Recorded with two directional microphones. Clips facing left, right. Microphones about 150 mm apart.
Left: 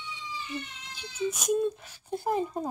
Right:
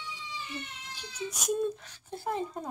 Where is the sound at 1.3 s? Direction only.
Centre (ahead or behind).